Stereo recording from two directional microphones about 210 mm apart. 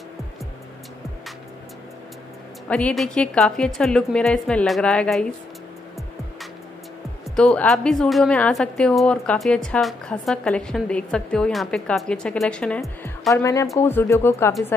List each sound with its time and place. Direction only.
2.7 s a woman's voice: 5° left (ahead or behind)
7.3 s a woman's voice: 5° left (ahead or behind)
13.3 s speech: 15° left (ahead or behind)